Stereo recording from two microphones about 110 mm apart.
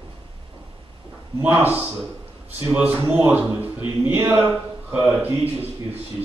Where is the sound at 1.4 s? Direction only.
15° right (ahead or behind).